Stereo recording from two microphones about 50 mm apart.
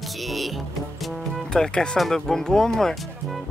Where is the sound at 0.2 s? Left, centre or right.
Centre.